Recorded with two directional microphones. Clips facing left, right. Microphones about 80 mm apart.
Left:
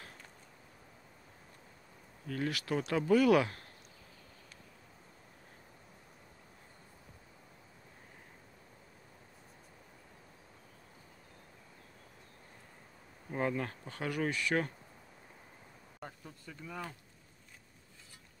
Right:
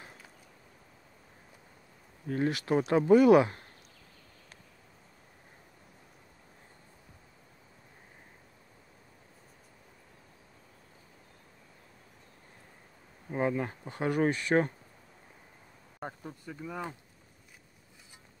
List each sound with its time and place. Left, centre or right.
2.2 s speech: right
13.3 s speech: centre; by 14.7 s right
16.0 s speech: right
16.5 s speech: centre